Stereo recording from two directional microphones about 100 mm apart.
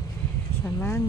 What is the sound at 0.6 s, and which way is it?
Speech, 20° left (ahead or behind).